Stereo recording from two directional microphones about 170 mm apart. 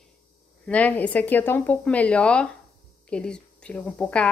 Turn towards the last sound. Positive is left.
turn(degrees=5)  # may be behind; listen again after turning